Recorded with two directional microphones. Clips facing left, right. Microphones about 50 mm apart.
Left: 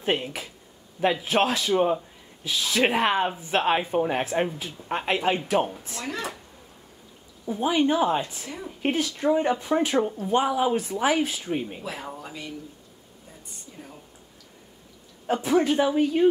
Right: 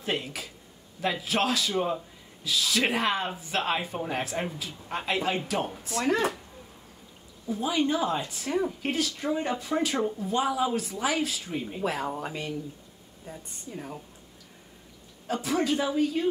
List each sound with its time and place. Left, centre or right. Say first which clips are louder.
0.0 s speech: left 5 dB; left
5.9 s speech: right 7 dB; right
7.4 s speech: left 4 dB; left
11.8 s speech: right 5 dB; right
15.2 s speech: left 5 dB; left